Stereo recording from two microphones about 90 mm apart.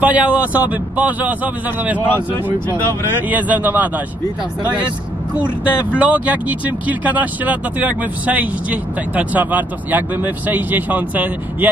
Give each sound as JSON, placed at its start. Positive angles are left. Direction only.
{"t": 0.0, "sound": "speech", "side_deg": -15}
{"t": 3.3, "sound": "speech", "side_deg": -20}
{"t": 5.7, "sound": "speech", "side_deg": -15}